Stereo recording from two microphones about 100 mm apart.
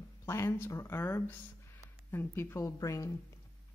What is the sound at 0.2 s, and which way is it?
Speech, 25° left (ahead or behind).